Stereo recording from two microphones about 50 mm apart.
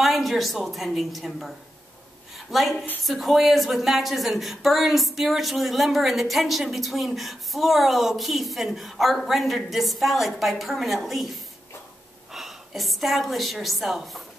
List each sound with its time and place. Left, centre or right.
0.0 s a woman's voice: centre